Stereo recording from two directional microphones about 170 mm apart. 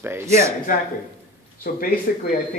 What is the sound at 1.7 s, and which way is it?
Speech, 55° left (ahead or behind).